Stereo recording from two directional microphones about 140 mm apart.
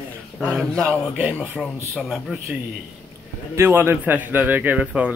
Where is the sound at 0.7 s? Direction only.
15° right (ahead or behind).